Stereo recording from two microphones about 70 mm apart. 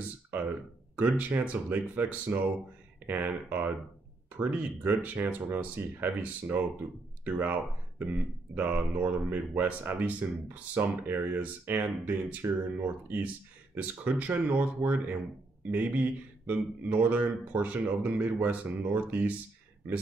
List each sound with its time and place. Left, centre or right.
0.3 s a sound: right
0.9 s speech: right
8.5 s speech: right